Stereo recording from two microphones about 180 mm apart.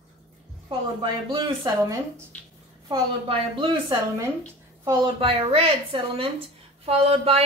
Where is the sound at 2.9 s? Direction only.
25° right (ahead or behind).